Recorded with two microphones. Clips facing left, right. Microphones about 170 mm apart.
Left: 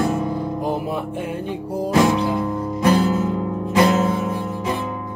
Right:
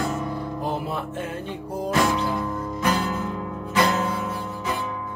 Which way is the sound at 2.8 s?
35° left (ahead or behind).